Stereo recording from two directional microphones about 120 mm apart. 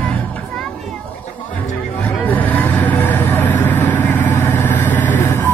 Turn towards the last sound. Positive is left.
turn(degrees=20)  # may be behind; listen again after turning